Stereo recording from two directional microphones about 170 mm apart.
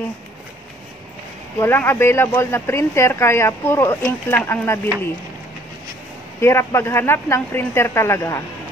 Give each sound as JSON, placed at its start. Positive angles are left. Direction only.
{"t": 1.6, "sound": "speech", "side_deg": 15}
{"t": 6.4, "sound": "speech", "side_deg": 15}